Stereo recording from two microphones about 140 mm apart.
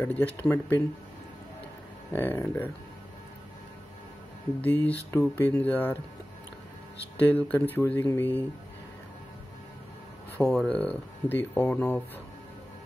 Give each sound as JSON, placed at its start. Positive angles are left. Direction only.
{"t": 0.0, "sound": "speech", "side_deg": 10}
{"t": 2.1, "sound": "speech", "side_deg": 15}
{"t": 4.6, "sound": "speech", "side_deg": 10}
{"t": 7.2, "sound": "speech", "side_deg": 10}
{"t": 10.4, "sound": "speech", "side_deg": 5}